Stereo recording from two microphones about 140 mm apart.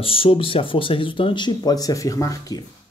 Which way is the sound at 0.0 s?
40° left (ahead or behind).